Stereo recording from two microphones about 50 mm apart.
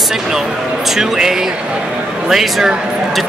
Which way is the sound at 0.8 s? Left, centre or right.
Centre.